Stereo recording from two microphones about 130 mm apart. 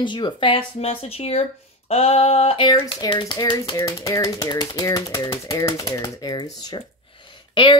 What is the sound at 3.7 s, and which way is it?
Speech, 20° left (ahead or behind).